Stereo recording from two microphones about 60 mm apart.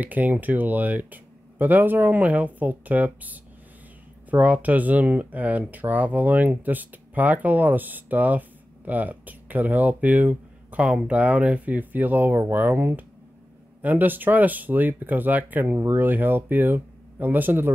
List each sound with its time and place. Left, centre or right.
0.0 s speech: right